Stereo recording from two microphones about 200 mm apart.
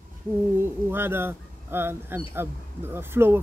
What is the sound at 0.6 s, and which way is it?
Speech, 10° right (ahead or behind).